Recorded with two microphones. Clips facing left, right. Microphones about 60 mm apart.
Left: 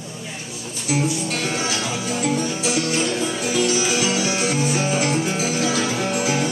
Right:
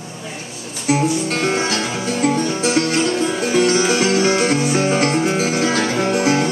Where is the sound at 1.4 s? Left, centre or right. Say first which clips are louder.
Right 5 dB; right.